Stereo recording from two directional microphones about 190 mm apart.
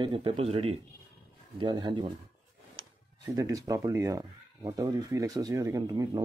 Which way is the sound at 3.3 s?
20° right (ahead or behind).